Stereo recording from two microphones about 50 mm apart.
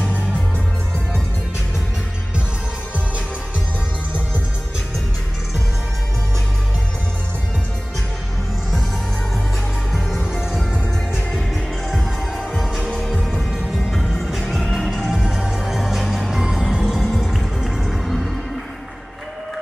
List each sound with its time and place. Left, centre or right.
10.2 s music: centre